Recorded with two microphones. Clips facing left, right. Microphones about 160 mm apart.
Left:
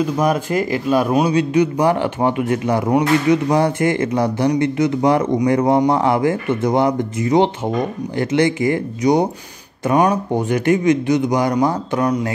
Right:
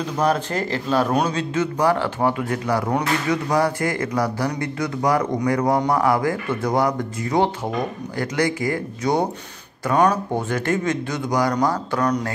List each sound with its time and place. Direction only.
0.0 s a man's voice: 10° left (ahead or behind)